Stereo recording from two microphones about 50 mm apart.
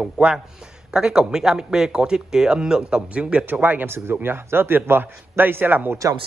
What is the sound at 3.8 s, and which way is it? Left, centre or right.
A man's voice, right.